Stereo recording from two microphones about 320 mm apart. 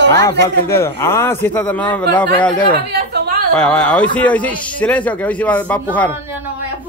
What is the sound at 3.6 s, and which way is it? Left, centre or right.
A man's voice, centre.